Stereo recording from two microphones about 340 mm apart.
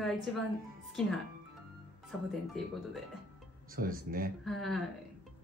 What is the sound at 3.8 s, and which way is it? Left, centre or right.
Speech, right.